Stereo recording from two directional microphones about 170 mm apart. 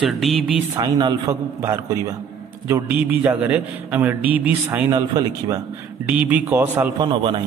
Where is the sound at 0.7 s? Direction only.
25° right (ahead or behind).